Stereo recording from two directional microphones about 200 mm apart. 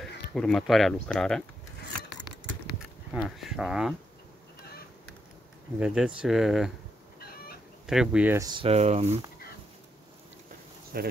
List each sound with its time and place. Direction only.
0.3 s speech: centre (ahead or behind)
3.1 s speech: centre (ahead or behind)
5.8 s speech: 5° right (ahead or behind)
7.2 s chicken: 50° left (ahead or behind)
7.8 s speech: 5° right (ahead or behind)
8.5 s speech: 25° right (ahead or behind)
10.9 s speech: 50° right (ahead or behind)